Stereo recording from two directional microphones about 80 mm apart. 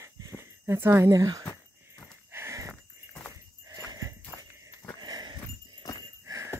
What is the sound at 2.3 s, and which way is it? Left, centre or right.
Livestock, right.